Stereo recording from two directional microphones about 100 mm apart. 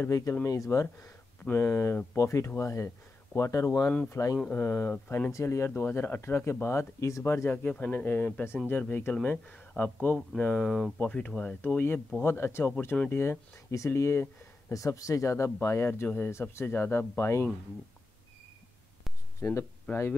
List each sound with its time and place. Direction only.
0.0 s speech: 30° left (ahead or behind)
4.9 s speech: 15° left (ahead or behind)
5.3 s speech: 30° left (ahead or behind); by 10.9 s centre (ahead or behind)
11.0 s speech: 10° left (ahead or behind); by 17.5 s 25° left (ahead or behind)
19.4 s speech: 30° left (ahead or behind)
19.9 s speech: 15° left (ahead or behind)